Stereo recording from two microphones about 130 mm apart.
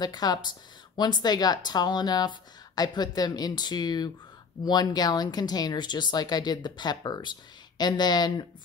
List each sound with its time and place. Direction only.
0.0 s speech: 30° left (ahead or behind)